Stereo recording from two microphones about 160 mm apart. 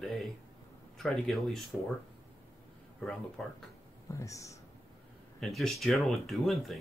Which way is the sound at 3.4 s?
Centre (ahead or behind).